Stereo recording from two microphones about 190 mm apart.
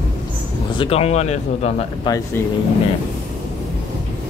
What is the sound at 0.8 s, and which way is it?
Speech, 30° left (ahead or behind).